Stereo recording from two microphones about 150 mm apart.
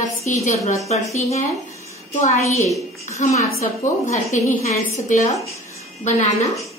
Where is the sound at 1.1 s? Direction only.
45° left (ahead or behind).